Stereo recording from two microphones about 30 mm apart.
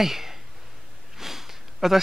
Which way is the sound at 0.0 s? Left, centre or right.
Centre.